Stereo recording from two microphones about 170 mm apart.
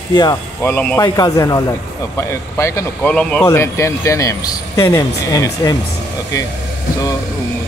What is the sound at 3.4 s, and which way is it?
Speech, 15° left (ahead or behind).